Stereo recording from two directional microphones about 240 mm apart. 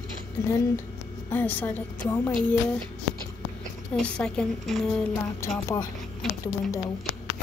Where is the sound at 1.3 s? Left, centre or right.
Centre.